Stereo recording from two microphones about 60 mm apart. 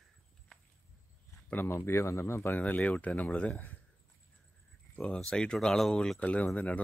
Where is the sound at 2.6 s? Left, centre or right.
Left.